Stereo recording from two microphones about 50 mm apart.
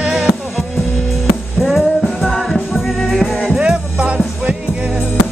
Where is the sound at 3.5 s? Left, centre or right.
Centre.